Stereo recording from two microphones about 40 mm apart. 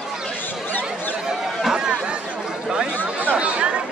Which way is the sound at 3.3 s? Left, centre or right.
Right.